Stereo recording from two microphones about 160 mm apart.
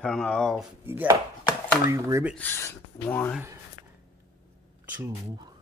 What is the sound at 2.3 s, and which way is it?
Speech, 15° left (ahead or behind).